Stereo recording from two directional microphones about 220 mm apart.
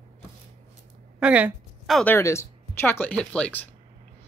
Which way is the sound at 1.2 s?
5° right (ahead or behind).